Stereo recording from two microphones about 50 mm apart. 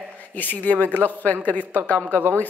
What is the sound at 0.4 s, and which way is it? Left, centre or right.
Speech, left.